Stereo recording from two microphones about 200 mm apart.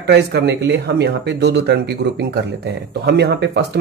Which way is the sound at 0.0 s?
55° right (ahead or behind).